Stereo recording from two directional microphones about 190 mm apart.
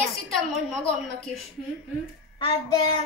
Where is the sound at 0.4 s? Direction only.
Centre (ahead or behind).